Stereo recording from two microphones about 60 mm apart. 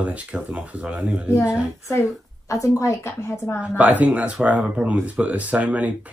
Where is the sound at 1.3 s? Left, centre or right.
Left.